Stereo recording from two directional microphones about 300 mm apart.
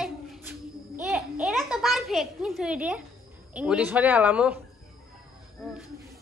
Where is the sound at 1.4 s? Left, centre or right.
Centre.